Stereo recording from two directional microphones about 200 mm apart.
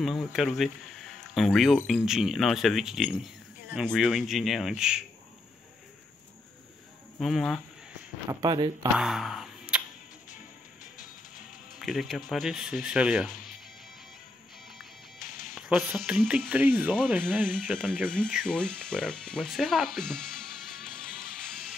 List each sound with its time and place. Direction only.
0.0 s speech: centre (ahead or behind)
7.2 s speech: centre (ahead or behind)
8.3 s speech: 20° right (ahead or behind)
8.9 s a sound: centre (ahead or behind)
11.8 s speech: centre (ahead or behind)
15.5 s speech: centre (ahead or behind)
17.8 s speech: 5° left (ahead or behind)